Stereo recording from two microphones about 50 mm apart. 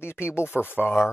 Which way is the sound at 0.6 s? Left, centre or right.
Left.